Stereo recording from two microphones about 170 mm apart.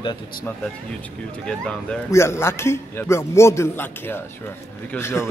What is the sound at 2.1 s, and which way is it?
A man's voice, 15° left (ahead or behind).